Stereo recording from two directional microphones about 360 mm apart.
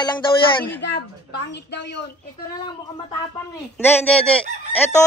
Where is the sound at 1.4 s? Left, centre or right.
Left.